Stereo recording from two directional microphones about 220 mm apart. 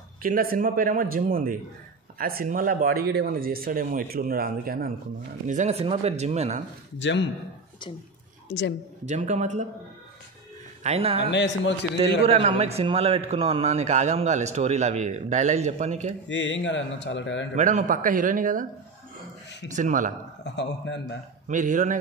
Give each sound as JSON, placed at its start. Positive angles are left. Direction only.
{"t": 0.2, "sound": "a man's voice", "side_deg": -40}
{"t": 5.5, "sound": "speech", "side_deg": -30}
{"t": 7.0, "sound": "a man's voice", "side_deg": 55}
{"t": 8.5, "sound": "a woman's voice", "side_deg": 50}
{"t": 9.0, "sound": "a man's voice", "side_deg": -30}
{"t": 10.8, "sound": "speech", "side_deg": -30}
{"t": 11.2, "sound": "a man's voice", "side_deg": 55}
{"t": 12.3, "sound": "a man's voice", "side_deg": -25}
{"t": 16.3, "sound": "a man's voice", "side_deg": 55}
{"t": 17.6, "sound": "a man's voice", "side_deg": -35}
{"t": 19.7, "sound": "a man's voice", "side_deg": -35}
{"t": 20.4, "sound": "a man's voice", "side_deg": 55}
{"t": 21.5, "sound": "a man's voice", "side_deg": -35}